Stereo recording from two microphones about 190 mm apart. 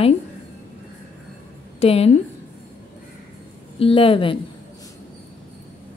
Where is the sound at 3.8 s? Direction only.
30° left (ahead or behind).